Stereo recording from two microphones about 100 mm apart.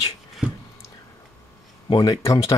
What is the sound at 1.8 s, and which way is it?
Speech, 45° left (ahead or behind).